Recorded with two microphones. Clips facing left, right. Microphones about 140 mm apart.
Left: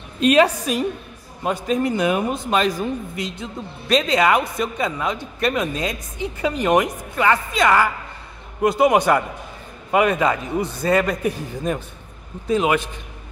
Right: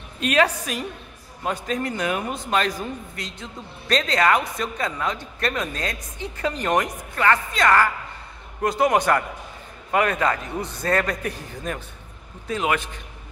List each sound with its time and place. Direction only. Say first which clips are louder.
0.2 s a woman's voice: left 5 dB; 20° left (ahead or behind)